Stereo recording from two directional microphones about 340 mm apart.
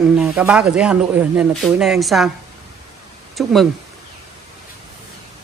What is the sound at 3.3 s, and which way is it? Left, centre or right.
Speech, centre.